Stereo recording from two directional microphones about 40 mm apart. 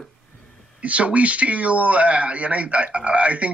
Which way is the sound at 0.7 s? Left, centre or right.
Right.